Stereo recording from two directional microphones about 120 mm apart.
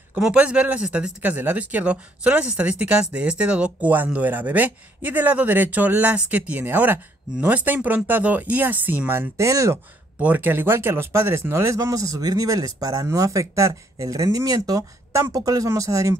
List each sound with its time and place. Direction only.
0.1 s speech: 10° right (ahead or behind); by 9.8 s 25° right (ahead or behind)
10.1 s speech: 15° right (ahead or behind)